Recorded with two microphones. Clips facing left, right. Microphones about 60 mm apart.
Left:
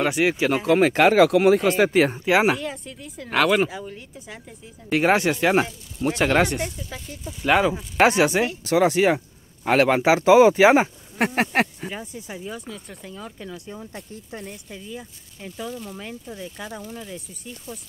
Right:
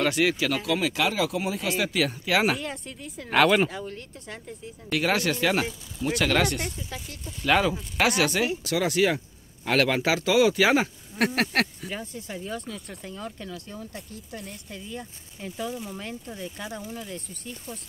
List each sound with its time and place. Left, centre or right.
0.0 s speech: left
0.7 s speech: left
1.6 s speech: left
2.5 s speech: centre
4.9 s speech: left
6.6 s speech: centre
7.4 s speech: centre
13.5 s speech: centre